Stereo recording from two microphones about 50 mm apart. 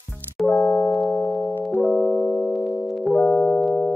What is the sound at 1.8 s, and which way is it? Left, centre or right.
Music, centre.